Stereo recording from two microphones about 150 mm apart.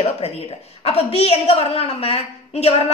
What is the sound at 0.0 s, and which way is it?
A woman's voice, 40° left (ahead or behind).